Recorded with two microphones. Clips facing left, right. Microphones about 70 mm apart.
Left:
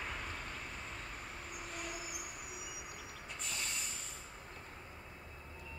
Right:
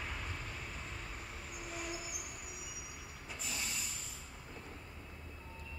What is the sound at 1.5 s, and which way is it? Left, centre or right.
Train, centre.